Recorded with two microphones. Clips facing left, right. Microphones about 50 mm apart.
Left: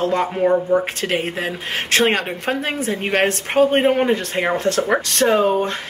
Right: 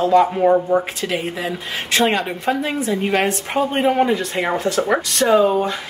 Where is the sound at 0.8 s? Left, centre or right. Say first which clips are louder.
Left 1 dB; left.